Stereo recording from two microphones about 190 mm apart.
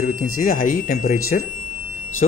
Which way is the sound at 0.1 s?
45° left (ahead or behind).